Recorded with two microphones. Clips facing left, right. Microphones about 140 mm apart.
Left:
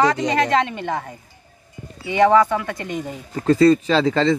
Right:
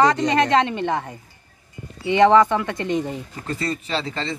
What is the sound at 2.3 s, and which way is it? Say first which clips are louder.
Speech: even; 5° left (ahead or behind).